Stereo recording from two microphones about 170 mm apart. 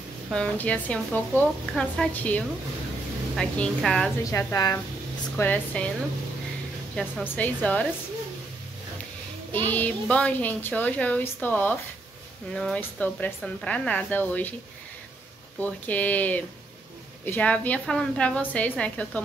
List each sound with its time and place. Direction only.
0.3 s a woman's voice: 5° left (ahead or behind)
4.2 s a woman's voice: 15° left (ahead or behind)
7.0 s a woman's voice: 5° left (ahead or behind)
9.7 s a woman's voice: 10° left (ahead or behind)
15.6 s a woman's voice: 10° left (ahead or behind)